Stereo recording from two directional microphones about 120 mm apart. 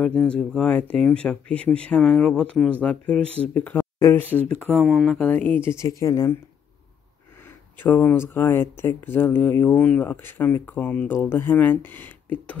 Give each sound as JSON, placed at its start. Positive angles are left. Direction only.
{"t": 0.0, "sound": "speech", "side_deg": 5}
{"t": 4.7, "sound": "speech", "side_deg": 0}
{"t": 7.8, "sound": "speech", "side_deg": 15}